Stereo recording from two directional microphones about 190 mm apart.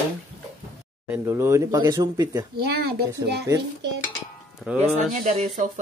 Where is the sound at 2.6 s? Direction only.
55° right (ahead or behind).